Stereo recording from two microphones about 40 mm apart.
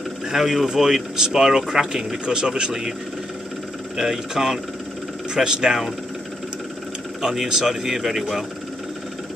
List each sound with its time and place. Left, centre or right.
0.3 s speech: centre
3.9 s speech: centre
7.2 s speech: centre